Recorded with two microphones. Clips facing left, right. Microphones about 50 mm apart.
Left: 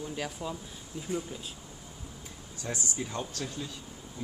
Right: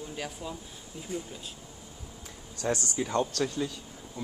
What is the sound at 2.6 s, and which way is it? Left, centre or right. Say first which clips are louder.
Speech: right 6 dB; right.